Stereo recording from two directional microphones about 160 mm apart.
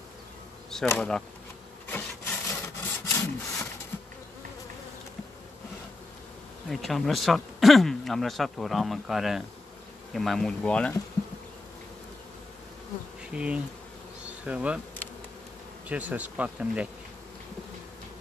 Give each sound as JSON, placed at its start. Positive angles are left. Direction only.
{"t": 0.8, "sound": "speech", "side_deg": 5}
{"t": 1.9, "sound": "wood", "side_deg": 15}
{"t": 6.7, "sound": "speech", "side_deg": 0}
{"t": 13.3, "sound": "speech", "side_deg": -5}
{"t": 14.2, "sound": "bee", "side_deg": -5}
{"t": 15.9, "sound": "speech", "side_deg": -10}